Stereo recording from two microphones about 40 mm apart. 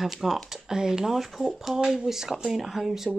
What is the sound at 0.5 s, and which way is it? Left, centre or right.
Speech, centre.